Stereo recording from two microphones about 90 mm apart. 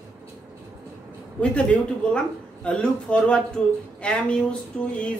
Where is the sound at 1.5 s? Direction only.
15° left (ahead or behind).